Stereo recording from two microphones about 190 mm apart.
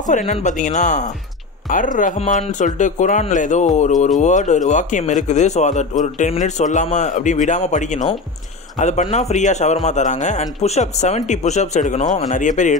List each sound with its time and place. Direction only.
0.1 s speech: 40° left (ahead or behind)